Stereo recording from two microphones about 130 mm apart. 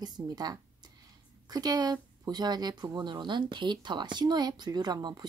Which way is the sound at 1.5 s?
30° right (ahead or behind).